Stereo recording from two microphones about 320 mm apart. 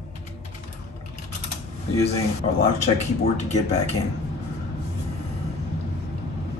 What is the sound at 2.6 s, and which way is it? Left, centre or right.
Speech, left.